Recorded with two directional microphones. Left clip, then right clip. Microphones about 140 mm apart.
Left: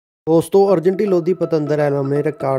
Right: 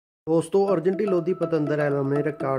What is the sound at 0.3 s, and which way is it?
Speech, 35° left (ahead or behind).